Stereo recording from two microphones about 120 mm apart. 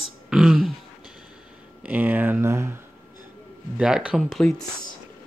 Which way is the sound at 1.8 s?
15° right (ahead or behind).